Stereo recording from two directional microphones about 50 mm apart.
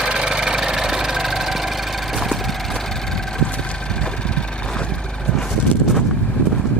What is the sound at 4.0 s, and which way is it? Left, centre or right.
Vehicle, centre.